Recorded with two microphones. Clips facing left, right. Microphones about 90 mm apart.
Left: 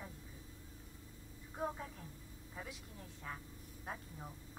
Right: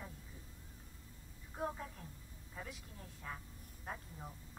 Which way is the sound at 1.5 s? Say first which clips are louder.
Even; centre (ahead or behind).